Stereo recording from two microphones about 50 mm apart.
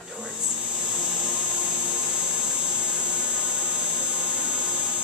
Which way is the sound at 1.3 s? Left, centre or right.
Right.